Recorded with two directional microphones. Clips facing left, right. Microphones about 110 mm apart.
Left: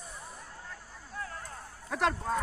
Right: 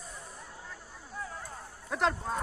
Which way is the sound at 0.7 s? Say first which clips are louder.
Even; 5° right (ahead or behind).